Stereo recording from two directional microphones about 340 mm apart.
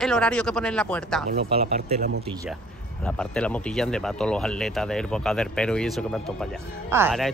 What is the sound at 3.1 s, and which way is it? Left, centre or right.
Speech, centre.